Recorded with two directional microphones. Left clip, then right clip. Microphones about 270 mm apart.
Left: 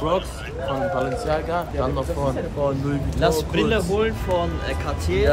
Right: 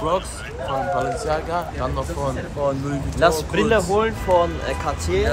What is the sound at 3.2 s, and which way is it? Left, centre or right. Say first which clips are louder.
Speech: right 3 dB; right.